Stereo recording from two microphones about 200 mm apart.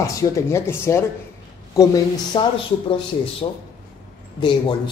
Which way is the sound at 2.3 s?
25° left (ahead or behind).